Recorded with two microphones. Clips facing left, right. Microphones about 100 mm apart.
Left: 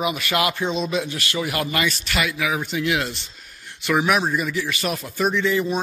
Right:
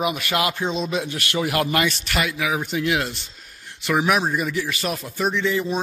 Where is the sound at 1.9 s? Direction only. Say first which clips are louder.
Even; 30° right (ahead or behind).